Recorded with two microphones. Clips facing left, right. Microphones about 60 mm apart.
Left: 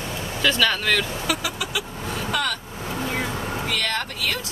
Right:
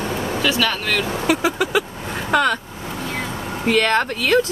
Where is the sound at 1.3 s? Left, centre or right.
Right.